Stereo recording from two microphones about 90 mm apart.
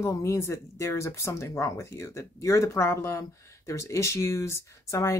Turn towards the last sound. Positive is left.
turn(degrees=35)  # may be behind; listen again after turning